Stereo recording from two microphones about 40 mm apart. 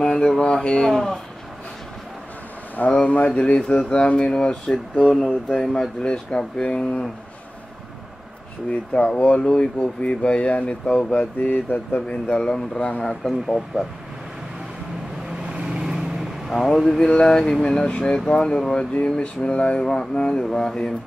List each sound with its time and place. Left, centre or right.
0.0 s a sound: centre
0.4 s speech: left
0.9 s speech: centre
2.8 s speech: left
5.0 s speech: centre; by 6.9 s left
8.6 s speech: left
11.4 s speech: left
12.3 s speech: left
15.2 s vehicle: right
16.5 s speech: centre
17.1 s speech: centre
17.8 s speech: left
19.0 s speech: left